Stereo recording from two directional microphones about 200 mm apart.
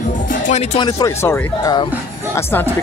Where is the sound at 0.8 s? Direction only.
15° left (ahead or behind).